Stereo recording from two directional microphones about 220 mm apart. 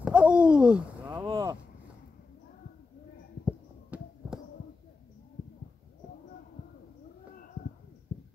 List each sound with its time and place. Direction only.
0.0 s a sound: 5° right (ahead or behind)
1.2 s vehicle: 20° right (ahead or behind)
3.4 s heart sounds: 5° right (ahead or behind)